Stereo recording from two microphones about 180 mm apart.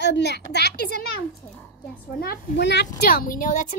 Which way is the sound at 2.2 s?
65° left (ahead or behind).